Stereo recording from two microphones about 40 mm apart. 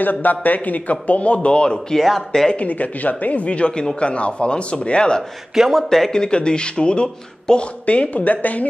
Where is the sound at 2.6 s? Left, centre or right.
Left.